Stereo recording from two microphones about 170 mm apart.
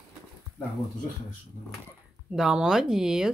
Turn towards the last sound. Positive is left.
turn(degrees=-5)  # may be behind; listen again after turning